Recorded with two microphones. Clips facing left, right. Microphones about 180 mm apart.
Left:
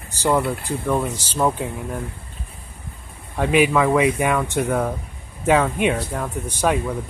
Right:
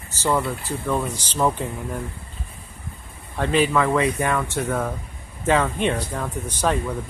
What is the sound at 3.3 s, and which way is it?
Speech, 10° left (ahead or behind).